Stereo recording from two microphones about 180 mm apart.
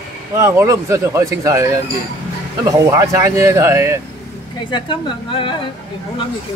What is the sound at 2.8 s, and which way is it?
Speech, 15° right (ahead or behind).